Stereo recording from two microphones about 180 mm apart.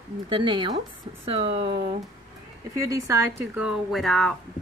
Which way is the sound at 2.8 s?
20° right (ahead or behind).